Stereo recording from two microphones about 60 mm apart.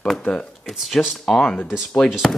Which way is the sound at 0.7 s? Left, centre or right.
Centre.